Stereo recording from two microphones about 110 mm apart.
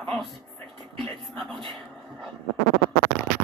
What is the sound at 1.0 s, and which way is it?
Speech, centre (ahead or behind).